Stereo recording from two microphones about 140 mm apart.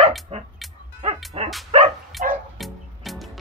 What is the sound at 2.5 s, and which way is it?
Music, centre (ahead or behind).